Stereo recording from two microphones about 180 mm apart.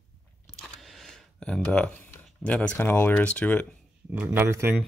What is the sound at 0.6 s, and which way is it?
Speech, centre (ahead or behind).